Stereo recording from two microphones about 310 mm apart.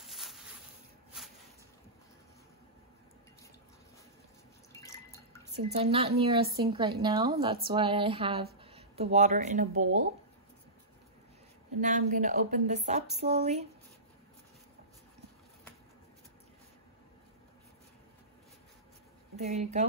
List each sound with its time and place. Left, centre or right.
0.0 s a sound: centre
4.7 s drip: centre
5.6 s speech: right
11.8 s a woman's voice: right
19.3 s speech: right